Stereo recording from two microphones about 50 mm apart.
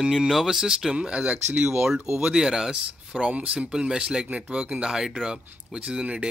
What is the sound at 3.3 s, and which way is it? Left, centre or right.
Speech, right.